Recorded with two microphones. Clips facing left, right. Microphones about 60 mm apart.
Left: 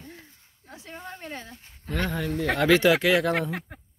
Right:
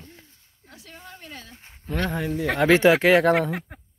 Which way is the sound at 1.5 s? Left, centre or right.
Right.